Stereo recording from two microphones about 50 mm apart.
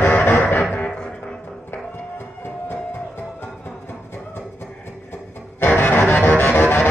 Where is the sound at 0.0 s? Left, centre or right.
Left.